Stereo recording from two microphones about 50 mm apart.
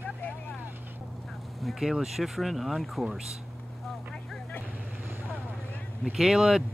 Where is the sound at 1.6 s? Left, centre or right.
Centre.